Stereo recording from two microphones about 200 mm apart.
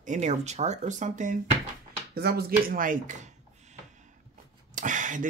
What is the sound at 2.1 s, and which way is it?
Speech, 50° right (ahead or behind).